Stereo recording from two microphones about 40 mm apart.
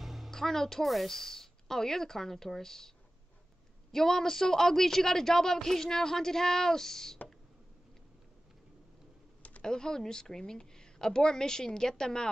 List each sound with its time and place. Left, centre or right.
0.0 s music: centre
0.3 s a woman's voice: centre
3.9 s a woman's voice: centre
9.6 s a woman's voice: centre